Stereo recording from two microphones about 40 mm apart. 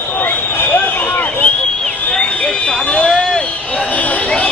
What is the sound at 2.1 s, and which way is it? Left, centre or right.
Fire alarm, left.